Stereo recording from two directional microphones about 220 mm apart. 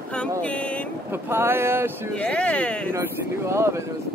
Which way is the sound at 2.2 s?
5° left (ahead or behind).